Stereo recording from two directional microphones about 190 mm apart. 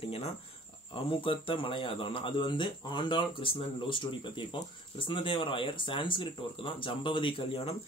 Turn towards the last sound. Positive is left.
turn(degrees=30)  # may be behind; listen again after turning